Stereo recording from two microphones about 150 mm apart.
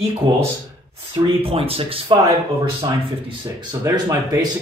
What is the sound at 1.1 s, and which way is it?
Speech, 40° right (ahead or behind).